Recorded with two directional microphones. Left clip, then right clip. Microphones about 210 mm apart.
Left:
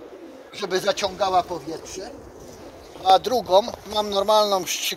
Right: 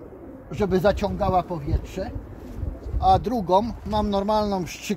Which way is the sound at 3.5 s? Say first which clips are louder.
Left 1 dB; 30° left (ahead or behind).